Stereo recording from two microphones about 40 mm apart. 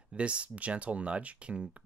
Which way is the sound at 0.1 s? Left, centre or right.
Right.